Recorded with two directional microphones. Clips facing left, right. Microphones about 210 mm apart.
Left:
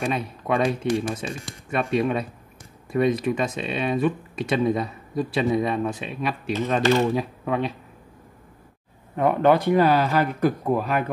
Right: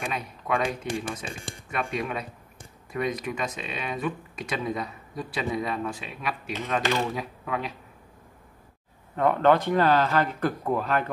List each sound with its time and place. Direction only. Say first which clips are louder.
0.0 s speech: left 7 dB; 30° left (ahead or behind)
9.1 s speech: left 2 dB; 10° left (ahead or behind)